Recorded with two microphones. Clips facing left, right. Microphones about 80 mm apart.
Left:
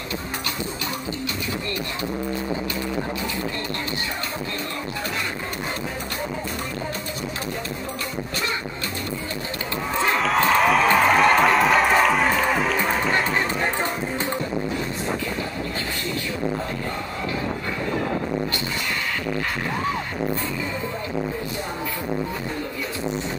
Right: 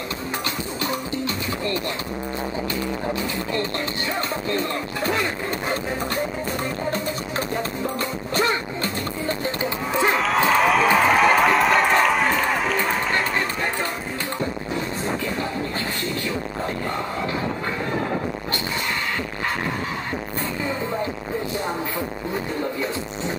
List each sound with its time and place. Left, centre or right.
10.1 s music: centre